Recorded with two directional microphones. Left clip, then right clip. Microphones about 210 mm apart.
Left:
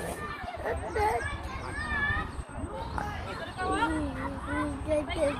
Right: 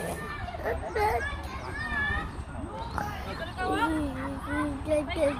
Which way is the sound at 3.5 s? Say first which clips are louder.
Right 1 dB; 15° right (ahead or behind).